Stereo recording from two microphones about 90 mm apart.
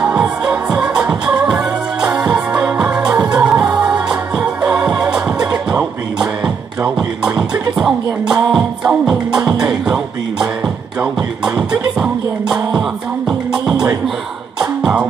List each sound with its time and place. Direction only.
0.0 s music: 15° right (ahead or behind)
7.3 s music: 45° right (ahead or behind)
7.7 s music: 5° right (ahead or behind)
11.7 s music: 10° right (ahead or behind)